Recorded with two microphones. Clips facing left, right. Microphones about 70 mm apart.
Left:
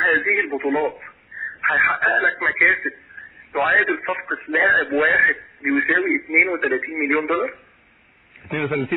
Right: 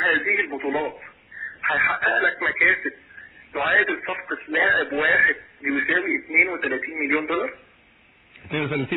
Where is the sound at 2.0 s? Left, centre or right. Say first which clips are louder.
Left 2 dB; centre.